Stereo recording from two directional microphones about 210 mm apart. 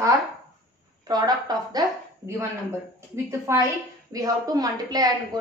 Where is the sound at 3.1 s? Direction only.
15° right (ahead or behind).